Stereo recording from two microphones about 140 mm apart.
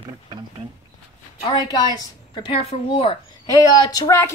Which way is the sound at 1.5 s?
30° left (ahead or behind).